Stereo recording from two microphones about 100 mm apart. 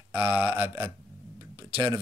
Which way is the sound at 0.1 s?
20° right (ahead or behind).